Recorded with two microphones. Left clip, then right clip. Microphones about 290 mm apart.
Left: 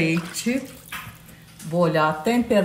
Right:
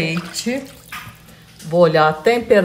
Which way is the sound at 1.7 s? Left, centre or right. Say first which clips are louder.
Right 7 dB; centre.